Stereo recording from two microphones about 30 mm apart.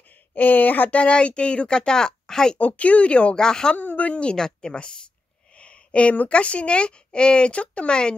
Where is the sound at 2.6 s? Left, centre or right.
Left.